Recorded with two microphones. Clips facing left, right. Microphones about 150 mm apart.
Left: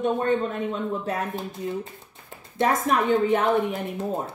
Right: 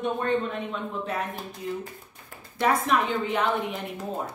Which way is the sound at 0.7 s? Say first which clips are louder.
Left 3 dB; 40° left (ahead or behind).